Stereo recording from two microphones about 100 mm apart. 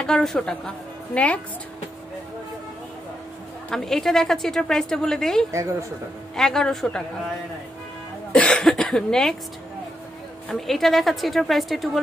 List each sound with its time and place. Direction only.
0.0 s speech: 5° left (ahead or behind)
3.7 s a woman's voice: 5° left (ahead or behind)
5.5 s speech: 30° right (ahead or behind)
6.3 s a woman's voice: 5° left (ahead or behind)
8.3 s speech: 10° left (ahead or behind)
10.5 s a woman's voice: centre (ahead or behind)